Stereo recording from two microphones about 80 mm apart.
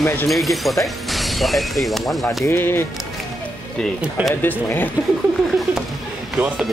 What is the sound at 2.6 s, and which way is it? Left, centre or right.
Speech, left.